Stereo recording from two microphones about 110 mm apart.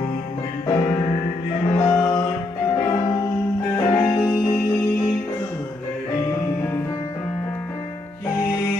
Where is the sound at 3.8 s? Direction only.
45° left (ahead or behind).